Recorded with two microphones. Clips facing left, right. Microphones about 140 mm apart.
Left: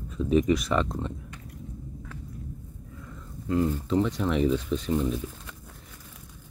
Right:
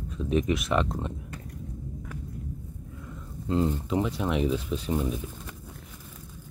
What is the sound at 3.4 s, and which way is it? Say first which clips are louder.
Speech: left 1 dB; 20° right (ahead or behind).